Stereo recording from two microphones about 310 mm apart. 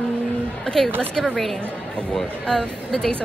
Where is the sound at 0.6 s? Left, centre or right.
Centre.